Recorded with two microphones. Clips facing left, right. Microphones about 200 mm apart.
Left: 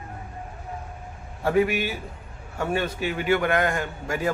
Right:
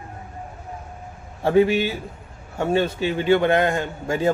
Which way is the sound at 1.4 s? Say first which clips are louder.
Right 5 dB; 25° right (ahead or behind).